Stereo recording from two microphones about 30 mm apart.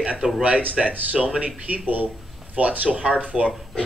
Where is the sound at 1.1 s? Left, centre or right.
Right.